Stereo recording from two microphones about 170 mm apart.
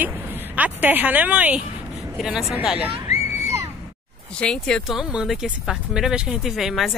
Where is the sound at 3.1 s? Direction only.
40° left (ahead or behind).